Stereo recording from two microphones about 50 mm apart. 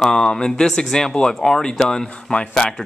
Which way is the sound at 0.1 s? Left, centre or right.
Centre.